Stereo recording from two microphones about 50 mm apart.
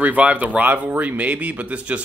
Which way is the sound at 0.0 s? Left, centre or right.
Right.